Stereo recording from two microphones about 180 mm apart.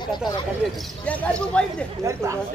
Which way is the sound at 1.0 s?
5° left (ahead or behind).